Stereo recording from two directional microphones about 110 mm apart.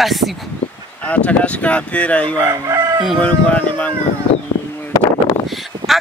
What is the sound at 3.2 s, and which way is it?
Speech, 15° left (ahead or behind).